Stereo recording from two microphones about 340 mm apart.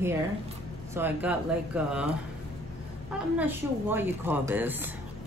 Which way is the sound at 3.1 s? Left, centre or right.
Centre.